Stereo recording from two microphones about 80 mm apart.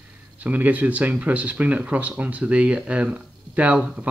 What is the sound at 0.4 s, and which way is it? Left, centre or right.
Speech, centre.